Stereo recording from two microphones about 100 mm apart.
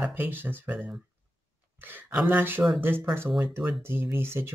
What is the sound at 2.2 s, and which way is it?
Speech, 20° right (ahead or behind).